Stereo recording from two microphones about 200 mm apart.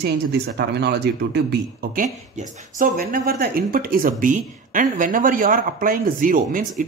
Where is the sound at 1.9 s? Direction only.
40° right (ahead or behind).